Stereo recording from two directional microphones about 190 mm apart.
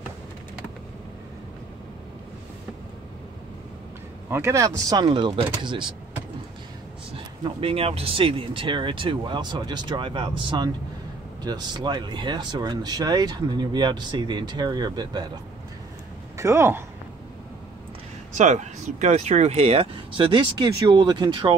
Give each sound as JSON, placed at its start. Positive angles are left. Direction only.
{"t": 4.3, "sound": "speech", "side_deg": -15}
{"t": 7.4, "sound": "speech", "side_deg": -30}
{"t": 16.3, "sound": "speech", "side_deg": -15}
{"t": 18.3, "sound": "speech", "side_deg": -40}